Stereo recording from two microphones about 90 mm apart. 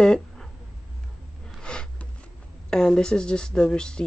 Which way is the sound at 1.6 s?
10° left (ahead or behind).